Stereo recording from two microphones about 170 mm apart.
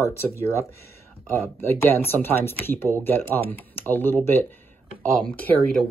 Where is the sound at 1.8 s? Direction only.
15° left (ahead or behind).